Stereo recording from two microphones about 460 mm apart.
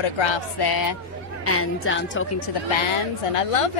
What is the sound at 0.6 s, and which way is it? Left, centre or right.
Speech, left.